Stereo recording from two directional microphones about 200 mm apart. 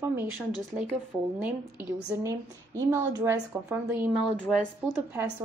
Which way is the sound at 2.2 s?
15° right (ahead or behind).